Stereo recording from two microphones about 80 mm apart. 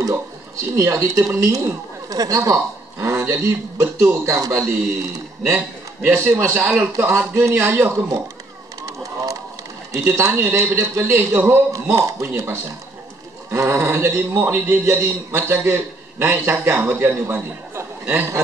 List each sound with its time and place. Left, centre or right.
0.7 s a man's voice: right
6.0 s a man's voice: right
8.8 s a sound: right
9.9 s a man's voice: right
11.7 s a man's voice: right